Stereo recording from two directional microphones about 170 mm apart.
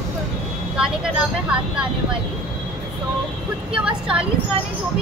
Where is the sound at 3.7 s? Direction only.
5° right (ahead or behind).